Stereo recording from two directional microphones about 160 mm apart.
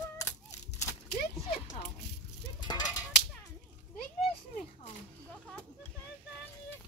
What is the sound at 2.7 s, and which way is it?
Whip, 25° left (ahead or behind).